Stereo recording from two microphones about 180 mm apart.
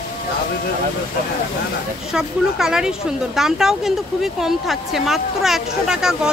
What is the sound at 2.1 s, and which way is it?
Speech, 5° right (ahead or behind).